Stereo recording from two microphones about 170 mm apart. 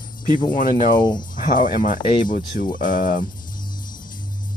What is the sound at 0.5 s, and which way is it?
Speech, 50° left (ahead or behind).